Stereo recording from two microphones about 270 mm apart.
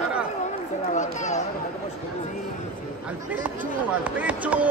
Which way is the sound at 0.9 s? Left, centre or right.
Left.